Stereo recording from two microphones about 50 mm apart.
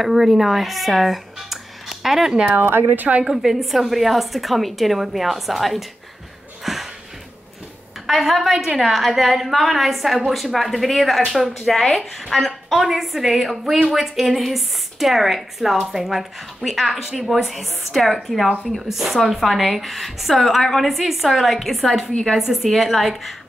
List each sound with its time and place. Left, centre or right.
0.0 s speech: centre
2.4 s a woman's voice: right
3.3 s a woman's voice: centre
6.6 s music: centre
8.1 s a woman's voice: centre